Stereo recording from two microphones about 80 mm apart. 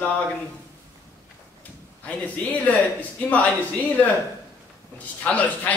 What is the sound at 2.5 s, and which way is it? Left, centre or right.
Speech, centre.